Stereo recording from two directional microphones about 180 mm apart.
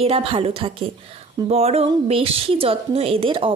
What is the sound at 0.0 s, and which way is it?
A woman's voice, 30° right (ahead or behind).